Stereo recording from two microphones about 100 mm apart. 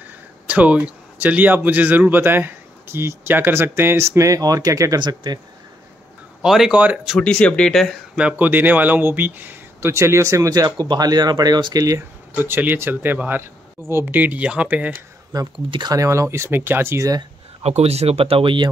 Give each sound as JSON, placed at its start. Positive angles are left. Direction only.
{"t": 0.5, "sound": "speech", "side_deg": -15}
{"t": 5.0, "sound": "speech", "side_deg": -50}
{"t": 6.4, "sound": "speech", "side_deg": -5}
{"t": 7.2, "sound": "speech", "side_deg": 10}
{"t": 8.2, "sound": "speech", "side_deg": -15}
{"t": 12.4, "sound": "speech", "side_deg": -20}
{"t": 15.9, "sound": "speech", "side_deg": -30}
{"t": 17.6, "sound": "speech", "side_deg": -90}